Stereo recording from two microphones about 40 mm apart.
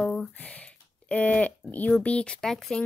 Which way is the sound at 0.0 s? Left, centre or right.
Centre.